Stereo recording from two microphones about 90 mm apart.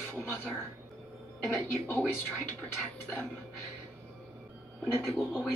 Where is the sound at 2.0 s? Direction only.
25° left (ahead or behind).